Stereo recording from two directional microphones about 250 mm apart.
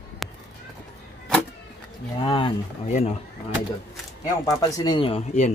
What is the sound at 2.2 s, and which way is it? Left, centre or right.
Speech, centre.